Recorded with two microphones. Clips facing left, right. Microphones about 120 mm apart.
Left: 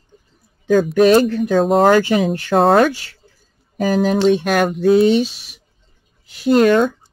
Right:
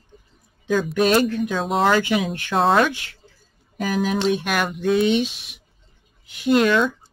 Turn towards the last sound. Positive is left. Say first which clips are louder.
# left 5 dB
turn(degrees=45)  # may be behind; listen again after turning